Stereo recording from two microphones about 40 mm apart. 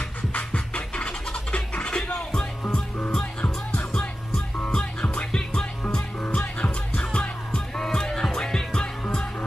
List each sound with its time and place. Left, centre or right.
0.3 s scratching: left
3.1 s music: left
6.2 s music: left
7.0 s music: left